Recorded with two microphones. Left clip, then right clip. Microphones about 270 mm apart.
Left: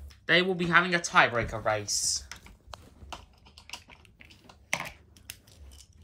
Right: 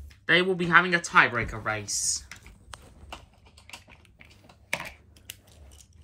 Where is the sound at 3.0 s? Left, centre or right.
Centre.